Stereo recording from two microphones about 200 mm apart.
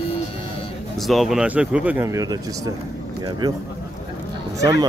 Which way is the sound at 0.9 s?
Centre (ahead or behind).